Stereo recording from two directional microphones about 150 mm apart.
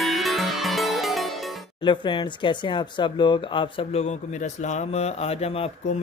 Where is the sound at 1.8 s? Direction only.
30° left (ahead or behind).